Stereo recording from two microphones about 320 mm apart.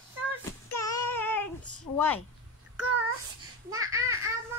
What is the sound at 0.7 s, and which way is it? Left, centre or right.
Child singing, centre.